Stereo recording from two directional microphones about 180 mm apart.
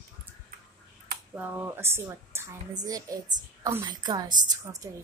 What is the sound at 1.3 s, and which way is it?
A woman's voice, 10° right (ahead or behind).